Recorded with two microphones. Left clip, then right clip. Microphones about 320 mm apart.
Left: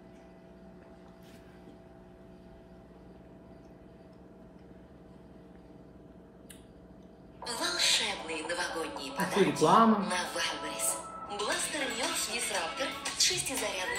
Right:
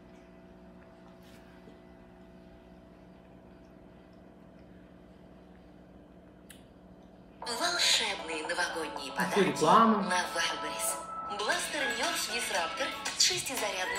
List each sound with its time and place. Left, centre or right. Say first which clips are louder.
7.4 s a woman's voice: right 1 dB; centre